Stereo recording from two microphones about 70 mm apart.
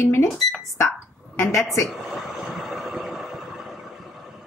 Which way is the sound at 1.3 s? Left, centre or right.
Left.